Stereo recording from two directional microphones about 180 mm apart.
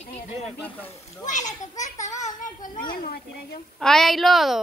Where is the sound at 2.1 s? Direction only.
40° left (ahead or behind).